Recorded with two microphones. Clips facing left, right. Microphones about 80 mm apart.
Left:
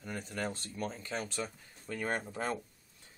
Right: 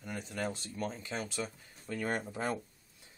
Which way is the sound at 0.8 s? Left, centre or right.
Centre.